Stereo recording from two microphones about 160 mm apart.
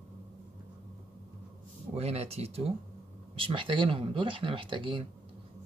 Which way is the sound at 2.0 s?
40° right (ahead or behind).